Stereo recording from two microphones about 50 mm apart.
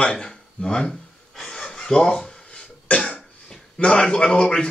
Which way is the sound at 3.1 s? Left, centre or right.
Centre.